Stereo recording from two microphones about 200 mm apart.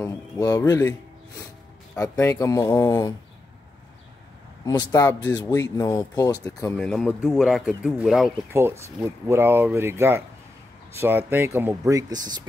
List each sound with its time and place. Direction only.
0.0 s speech: 15° left (ahead or behind)
2.0 s speech: 15° left (ahead or behind)
4.6 s speech: 15° left (ahead or behind)
6.8 s speech: 5° left (ahead or behind)
8.5 s speech: 15° right (ahead or behind)